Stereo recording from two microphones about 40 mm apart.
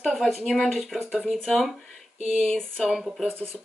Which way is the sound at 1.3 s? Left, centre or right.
Centre.